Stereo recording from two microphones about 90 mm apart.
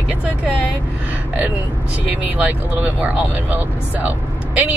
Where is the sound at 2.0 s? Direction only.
20° right (ahead or behind).